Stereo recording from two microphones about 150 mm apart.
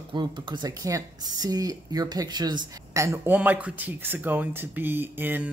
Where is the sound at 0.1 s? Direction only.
30° right (ahead or behind).